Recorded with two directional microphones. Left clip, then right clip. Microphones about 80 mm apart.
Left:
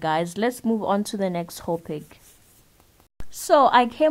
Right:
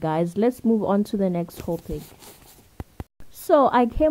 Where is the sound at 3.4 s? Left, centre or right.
Right.